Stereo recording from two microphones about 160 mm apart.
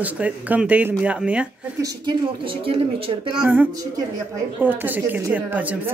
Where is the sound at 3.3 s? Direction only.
10° right (ahead or behind).